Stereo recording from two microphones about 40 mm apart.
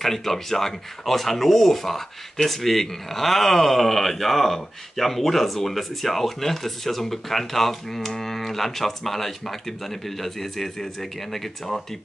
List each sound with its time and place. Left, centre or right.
0.0 s speech: centre